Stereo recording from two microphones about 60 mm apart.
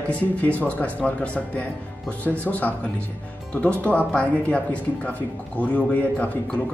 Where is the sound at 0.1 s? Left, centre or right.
Left.